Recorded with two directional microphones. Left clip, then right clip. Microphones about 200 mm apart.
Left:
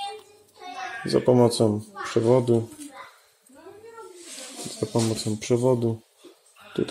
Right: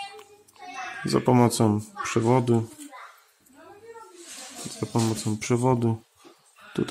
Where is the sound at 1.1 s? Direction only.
35° right (ahead or behind).